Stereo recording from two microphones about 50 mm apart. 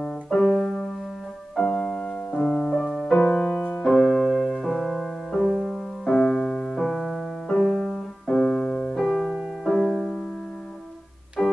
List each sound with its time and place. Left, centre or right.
0.0 s piano: centre
1.6 s music: centre
3.2 s music: left
3.8 s music: centre
11.4 s organ: left